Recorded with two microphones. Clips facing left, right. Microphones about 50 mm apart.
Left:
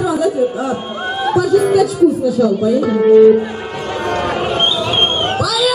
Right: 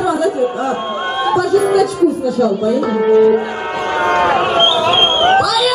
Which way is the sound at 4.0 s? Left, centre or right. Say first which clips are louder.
Right 5 dB; right.